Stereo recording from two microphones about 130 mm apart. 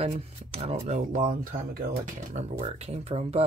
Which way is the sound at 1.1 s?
90° right.